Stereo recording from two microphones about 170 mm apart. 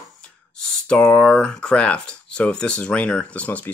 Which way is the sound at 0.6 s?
5° left (ahead or behind).